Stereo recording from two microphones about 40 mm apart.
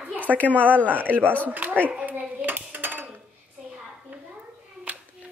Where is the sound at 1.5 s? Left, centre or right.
Right.